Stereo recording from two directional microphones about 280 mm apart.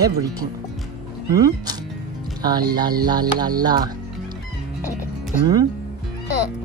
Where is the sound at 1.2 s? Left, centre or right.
Centre.